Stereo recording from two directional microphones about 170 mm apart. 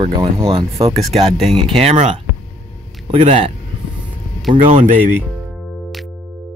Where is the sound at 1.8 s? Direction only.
40° right (ahead or behind).